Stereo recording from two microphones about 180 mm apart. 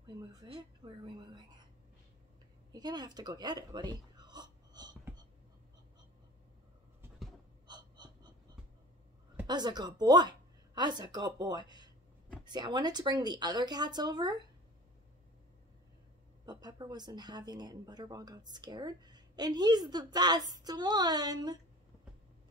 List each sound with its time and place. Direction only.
0.0 s speech: 25° right (ahead or behind)
2.7 s a sound: 25° right (ahead or behind)
7.6 s gasp: 25° right (ahead or behind)
9.5 s speech: 25° right (ahead or behind)
16.4 s speech: 20° right (ahead or behind)